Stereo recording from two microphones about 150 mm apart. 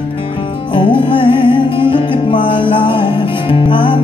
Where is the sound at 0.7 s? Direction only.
35° left (ahead or behind).